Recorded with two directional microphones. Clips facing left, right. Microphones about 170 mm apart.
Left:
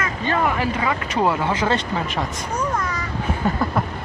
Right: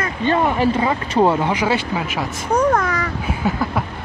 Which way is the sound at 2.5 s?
60° right (ahead or behind).